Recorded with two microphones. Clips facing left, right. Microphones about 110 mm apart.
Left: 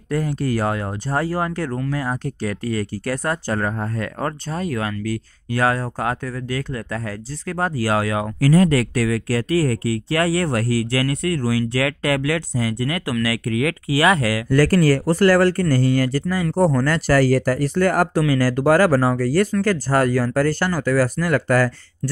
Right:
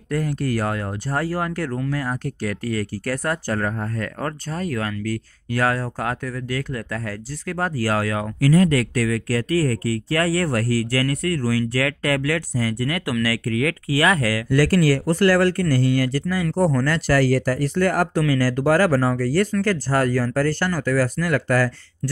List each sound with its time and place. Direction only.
0.6 s speech: 25° left (ahead or behind)
4.6 s speech: 10° left (ahead or behind)
8.4 s speech: 30° left (ahead or behind)
14.5 s speech: 45° left (ahead or behind)